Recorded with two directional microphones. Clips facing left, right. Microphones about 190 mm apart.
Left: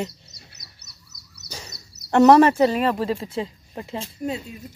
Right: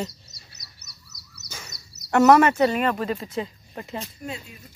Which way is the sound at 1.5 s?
35° left (ahead or behind).